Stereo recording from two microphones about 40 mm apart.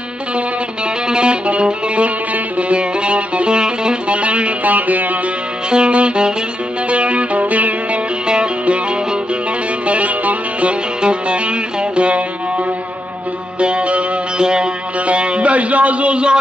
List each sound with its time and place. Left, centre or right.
1.0 s music: right
5.7 s music: right
8.3 s music: right
9.8 s music: right